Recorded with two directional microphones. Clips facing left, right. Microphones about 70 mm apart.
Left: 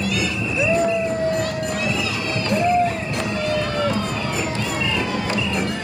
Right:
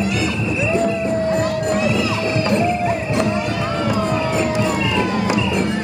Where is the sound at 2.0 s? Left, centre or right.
Right.